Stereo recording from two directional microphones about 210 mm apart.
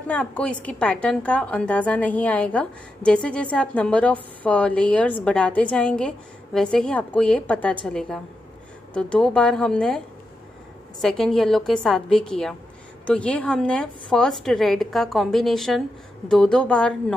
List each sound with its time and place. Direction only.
0.1 s a woman's voice: 5° left (ahead or behind)